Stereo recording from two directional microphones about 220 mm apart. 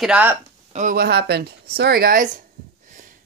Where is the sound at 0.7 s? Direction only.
40° right (ahead or behind).